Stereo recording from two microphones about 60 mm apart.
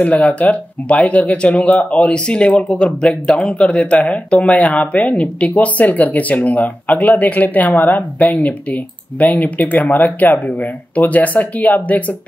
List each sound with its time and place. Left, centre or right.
0.0 s speech: left